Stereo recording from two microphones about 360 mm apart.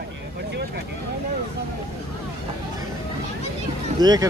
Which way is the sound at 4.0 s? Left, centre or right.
Centre.